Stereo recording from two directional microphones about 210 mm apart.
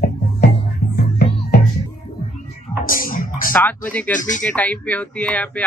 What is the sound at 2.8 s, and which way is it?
Music, 40° left (ahead or behind).